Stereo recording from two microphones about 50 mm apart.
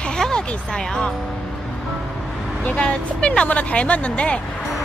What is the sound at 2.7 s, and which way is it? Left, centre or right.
Speech, left.